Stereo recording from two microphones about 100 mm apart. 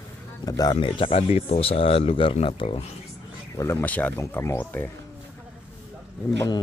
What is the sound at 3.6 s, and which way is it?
Speech, 25° left (ahead or behind).